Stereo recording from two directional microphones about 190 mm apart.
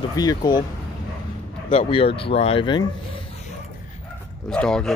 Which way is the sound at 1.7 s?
30° left (ahead or behind).